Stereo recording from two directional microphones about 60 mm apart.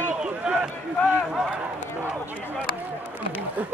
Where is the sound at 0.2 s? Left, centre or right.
Centre.